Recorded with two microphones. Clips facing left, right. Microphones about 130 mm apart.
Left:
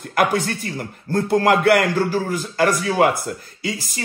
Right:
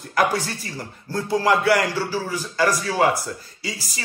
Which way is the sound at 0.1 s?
55° left (ahead or behind).